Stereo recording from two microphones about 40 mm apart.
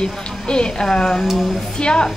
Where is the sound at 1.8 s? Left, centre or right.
Left.